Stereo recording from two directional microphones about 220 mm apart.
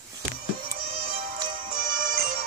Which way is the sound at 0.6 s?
40° right (ahead or behind).